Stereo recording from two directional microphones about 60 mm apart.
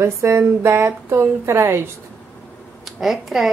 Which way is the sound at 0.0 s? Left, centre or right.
Right.